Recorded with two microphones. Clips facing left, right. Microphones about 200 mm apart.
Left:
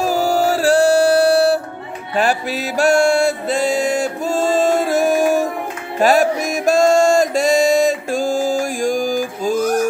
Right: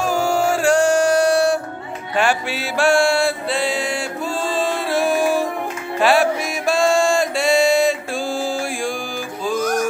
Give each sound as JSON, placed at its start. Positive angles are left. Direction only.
{"t": 0.0, "sound": "music", "side_deg": 35}